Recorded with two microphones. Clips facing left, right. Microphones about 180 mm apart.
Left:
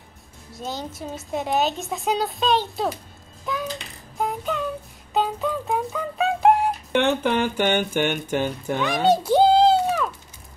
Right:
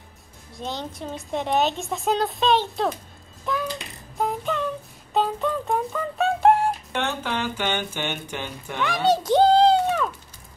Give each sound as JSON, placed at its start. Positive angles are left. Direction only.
{"t": 0.6, "sound": "speech", "side_deg": 5}
{"t": 3.4, "sound": "child singing", "side_deg": 0}
{"t": 5.1, "sound": "speech", "side_deg": 0}
{"t": 7.2, "sound": "speech", "side_deg": 55}
{"t": 8.7, "sound": "a sound", "side_deg": 15}